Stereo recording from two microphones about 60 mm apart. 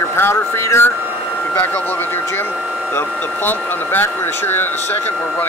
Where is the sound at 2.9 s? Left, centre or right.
Left.